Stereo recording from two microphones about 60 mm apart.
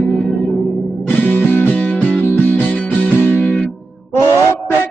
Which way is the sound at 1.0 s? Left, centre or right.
Left.